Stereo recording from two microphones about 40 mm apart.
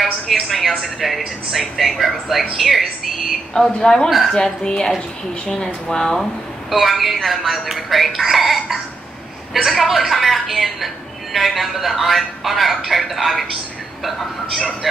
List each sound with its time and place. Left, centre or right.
0.0 s speech: centre
3.8 s speech: centre
6.7 s speech: centre